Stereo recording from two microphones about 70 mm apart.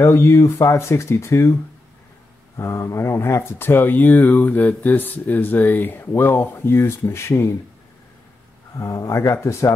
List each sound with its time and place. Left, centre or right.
0.0 s speech: left
8.7 s speech: left